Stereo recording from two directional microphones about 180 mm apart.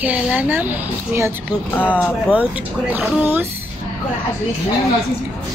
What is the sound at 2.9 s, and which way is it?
Speech, 10° right (ahead or behind).